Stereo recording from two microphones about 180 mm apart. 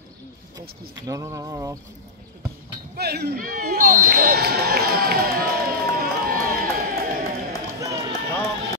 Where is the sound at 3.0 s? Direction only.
65° right (ahead or behind).